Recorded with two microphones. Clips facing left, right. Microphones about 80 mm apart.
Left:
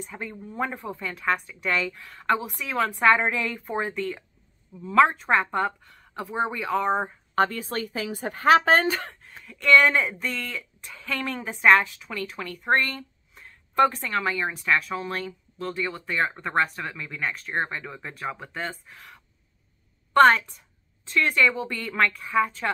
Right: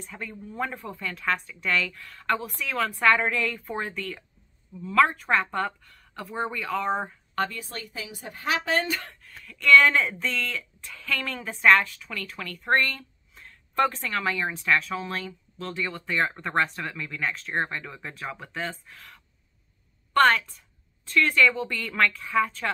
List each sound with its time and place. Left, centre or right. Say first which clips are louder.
0.0 s a woman's voice: left 2 dB; centre
7.3 s a woman's voice: left 6 dB; left
8.9 s a sound: left 2 dB; left
9.6 s a woman's voice: even; centre
20.2 s a woman's voice: left 3 dB; centre